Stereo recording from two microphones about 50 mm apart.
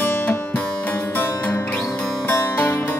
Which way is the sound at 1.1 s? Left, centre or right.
Left.